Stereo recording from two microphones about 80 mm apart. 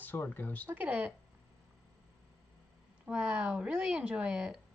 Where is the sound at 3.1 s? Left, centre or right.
Centre.